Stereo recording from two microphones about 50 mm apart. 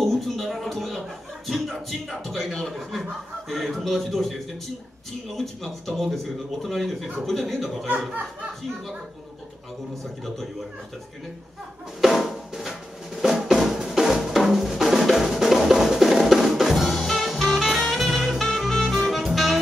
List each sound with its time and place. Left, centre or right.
0.0 s a sound: centre
1.5 s speech: centre
7.9 s speech: right
10.2 s speech: centre
12.0 s drum: centre